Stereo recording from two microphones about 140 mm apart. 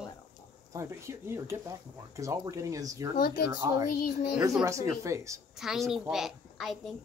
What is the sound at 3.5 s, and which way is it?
Speech, 25° right (ahead or behind).